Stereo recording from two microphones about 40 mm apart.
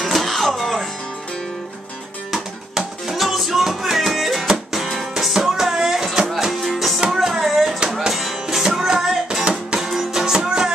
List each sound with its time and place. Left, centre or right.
0.0 s music: centre
2.3 s music: centre
5.1 s music: centre
6.6 s music: centre
9.4 s music: right
9.8 s music: centre